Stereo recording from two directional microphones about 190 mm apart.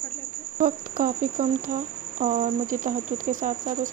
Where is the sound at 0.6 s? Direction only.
45° right (ahead or behind).